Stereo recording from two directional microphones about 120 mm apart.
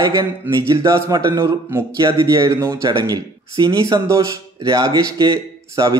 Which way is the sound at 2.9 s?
35° right (ahead or behind).